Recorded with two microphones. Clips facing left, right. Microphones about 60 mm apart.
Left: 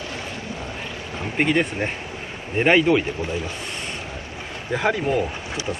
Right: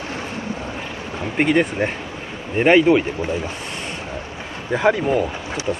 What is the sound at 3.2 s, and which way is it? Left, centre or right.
Speech, right.